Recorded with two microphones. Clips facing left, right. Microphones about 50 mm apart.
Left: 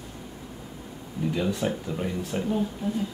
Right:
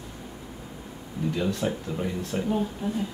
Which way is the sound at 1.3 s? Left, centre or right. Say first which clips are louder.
Left 1 dB; centre.